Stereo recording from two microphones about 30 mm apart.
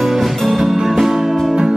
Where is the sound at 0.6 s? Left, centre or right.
Centre.